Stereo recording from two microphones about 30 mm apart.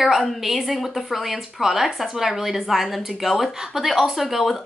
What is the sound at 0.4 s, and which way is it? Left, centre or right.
Speech, centre.